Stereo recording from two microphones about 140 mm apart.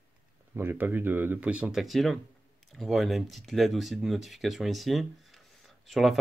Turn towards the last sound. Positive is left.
turn(degrees=0)  # may be behind; listen again after turning